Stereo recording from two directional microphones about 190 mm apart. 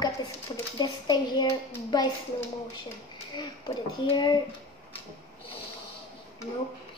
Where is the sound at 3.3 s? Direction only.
25° left (ahead or behind).